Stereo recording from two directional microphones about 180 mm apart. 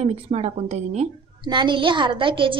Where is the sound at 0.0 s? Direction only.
35° right (ahead or behind).